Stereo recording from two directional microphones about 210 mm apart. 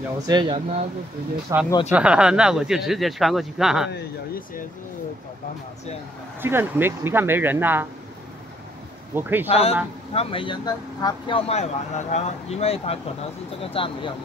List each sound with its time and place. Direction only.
0.3 s speech: 25° right (ahead or behind)
1.5 s speech: 15° right (ahead or behind)
6.4 s speech: 10° right (ahead or behind)
9.1 s speech: 10° right (ahead or behind)
9.5 s speech: 30° left (ahead or behind)